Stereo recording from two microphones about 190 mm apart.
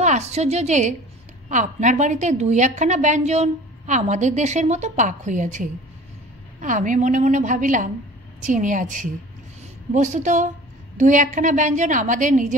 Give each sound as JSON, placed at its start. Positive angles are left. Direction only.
{"t": 0.0, "sound": "a woman's voice", "side_deg": -35}